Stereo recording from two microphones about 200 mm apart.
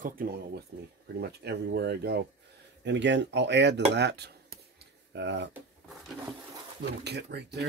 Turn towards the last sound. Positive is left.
turn(degrees=-55)  # may be behind; listen again after turning